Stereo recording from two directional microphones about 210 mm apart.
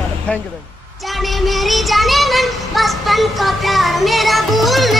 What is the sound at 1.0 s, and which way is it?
Child singing, centre (ahead or behind).